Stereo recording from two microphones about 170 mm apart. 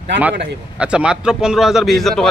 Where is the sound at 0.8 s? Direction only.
5° right (ahead or behind).